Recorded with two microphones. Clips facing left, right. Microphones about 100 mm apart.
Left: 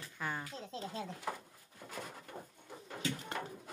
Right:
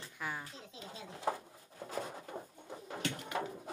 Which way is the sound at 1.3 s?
30° right (ahead or behind).